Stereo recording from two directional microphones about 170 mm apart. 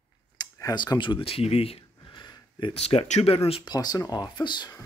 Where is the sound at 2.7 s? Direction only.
35° left (ahead or behind).